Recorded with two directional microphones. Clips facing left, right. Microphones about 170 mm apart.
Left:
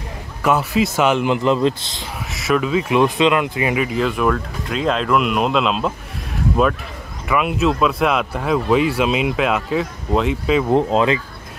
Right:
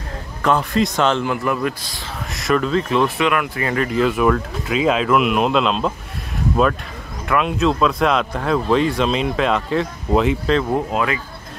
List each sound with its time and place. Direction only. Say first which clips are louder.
0.4 s speech: even; 5° left (ahead or behind); by 2.0 s 25° left (ahead or behind)
2.3 s speech: even; 5° left (ahead or behind)
7.2 s speech: even; 5° left (ahead or behind)
10.7 s speech: left 5 dB; 25° left (ahead or behind)